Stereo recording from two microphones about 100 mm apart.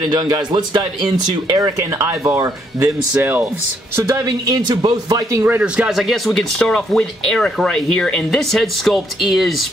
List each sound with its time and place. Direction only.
0.1 s speech: 40° right (ahead or behind); by 3.4 s 20° right (ahead or behind)
3.9 s speech: 30° right (ahead or behind)
5.4 s speech: 15° right (ahead or behind)